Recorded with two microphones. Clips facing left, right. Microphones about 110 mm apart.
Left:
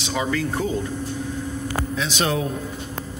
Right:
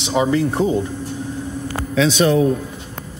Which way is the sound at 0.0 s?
25° right (ahead or behind).